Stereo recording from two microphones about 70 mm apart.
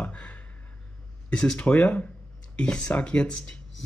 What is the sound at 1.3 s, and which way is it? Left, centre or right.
Speech, centre.